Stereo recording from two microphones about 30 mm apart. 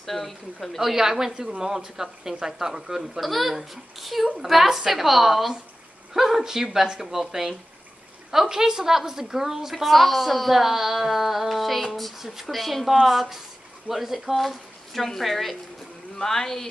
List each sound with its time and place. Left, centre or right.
0.0 s speech: centre
0.7 s a woman's voice: centre
3.2 s a woman's voice: centre
9.8 s a woman's voice: centre
16.2 s speech: centre